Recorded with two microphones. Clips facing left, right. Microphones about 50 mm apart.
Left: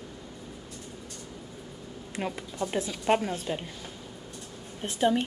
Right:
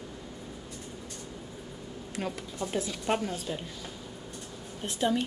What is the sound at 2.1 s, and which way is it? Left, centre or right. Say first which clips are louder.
A woman's voice: left 2 dB; left.